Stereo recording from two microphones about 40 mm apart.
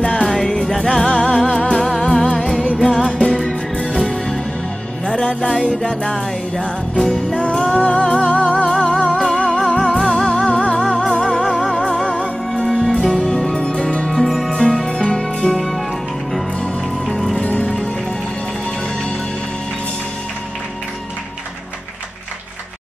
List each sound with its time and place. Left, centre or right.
0.0 s music: left
5.0 s music: left
7.3 s music: left
12.6 s music: centre
13.5 s music: left
15.5 s music: centre
17.4 s music: left